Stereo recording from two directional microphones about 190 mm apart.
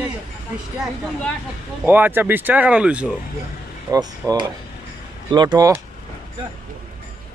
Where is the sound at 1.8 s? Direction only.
10° right (ahead or behind).